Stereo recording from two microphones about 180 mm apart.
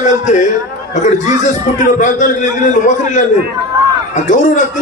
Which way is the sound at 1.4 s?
45° left (ahead or behind).